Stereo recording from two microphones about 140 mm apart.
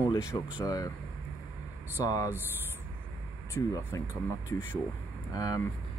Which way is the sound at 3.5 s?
25° left (ahead or behind).